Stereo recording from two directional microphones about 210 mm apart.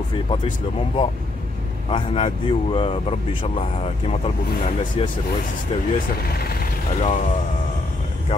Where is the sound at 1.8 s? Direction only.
25° left (ahead or behind).